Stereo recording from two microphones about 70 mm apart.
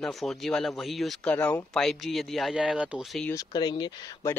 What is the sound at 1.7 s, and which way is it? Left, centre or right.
Speech, centre.